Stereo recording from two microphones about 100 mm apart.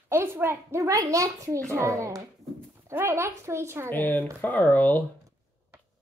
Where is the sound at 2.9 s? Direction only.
25° right (ahead or behind).